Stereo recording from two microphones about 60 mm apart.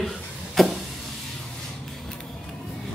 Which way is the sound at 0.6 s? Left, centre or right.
Centre.